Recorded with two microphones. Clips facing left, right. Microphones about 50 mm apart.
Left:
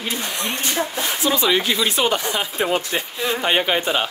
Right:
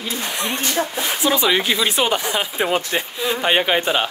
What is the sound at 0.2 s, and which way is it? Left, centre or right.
Speech, right.